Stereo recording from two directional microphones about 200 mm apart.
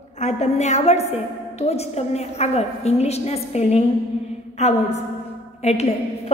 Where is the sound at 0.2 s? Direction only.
35° left (ahead or behind).